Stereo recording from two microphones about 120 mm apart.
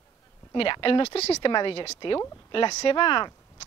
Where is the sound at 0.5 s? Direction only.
45° left (ahead or behind).